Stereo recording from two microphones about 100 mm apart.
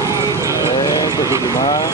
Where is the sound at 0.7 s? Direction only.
35° left (ahead or behind).